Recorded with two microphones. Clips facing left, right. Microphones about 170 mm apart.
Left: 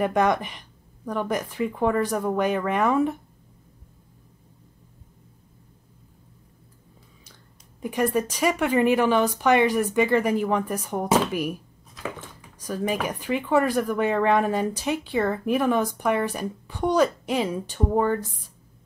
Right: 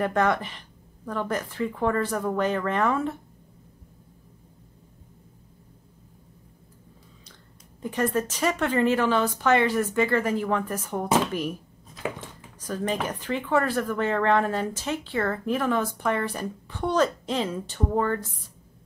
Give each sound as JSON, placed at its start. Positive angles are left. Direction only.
{"t": 0.0, "sound": "speech", "side_deg": 15}
{"t": 7.8, "sound": "speech", "side_deg": 10}
{"t": 11.9, "sound": "a sound", "side_deg": -20}
{"t": 12.5, "sound": "speech", "side_deg": 10}